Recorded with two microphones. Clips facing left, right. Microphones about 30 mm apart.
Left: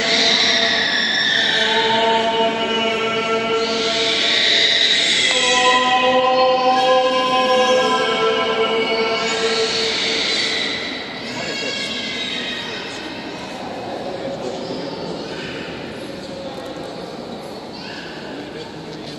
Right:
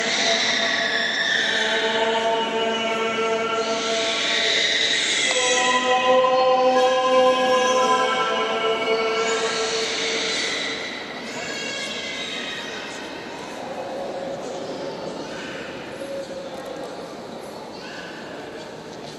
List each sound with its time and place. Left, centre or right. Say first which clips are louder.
0.0 s music: left 5 dB; left